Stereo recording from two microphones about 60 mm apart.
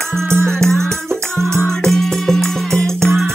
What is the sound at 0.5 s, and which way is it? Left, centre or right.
Music, centre.